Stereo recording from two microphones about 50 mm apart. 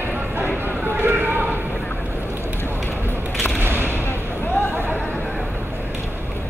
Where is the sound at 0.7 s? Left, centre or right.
Right.